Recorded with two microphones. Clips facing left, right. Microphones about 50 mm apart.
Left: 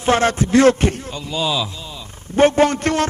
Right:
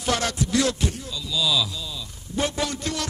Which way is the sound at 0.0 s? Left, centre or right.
Left.